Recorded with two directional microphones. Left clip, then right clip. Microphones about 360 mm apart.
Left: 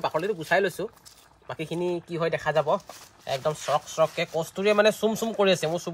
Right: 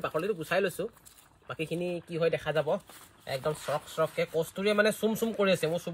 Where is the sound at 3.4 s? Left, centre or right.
Centre.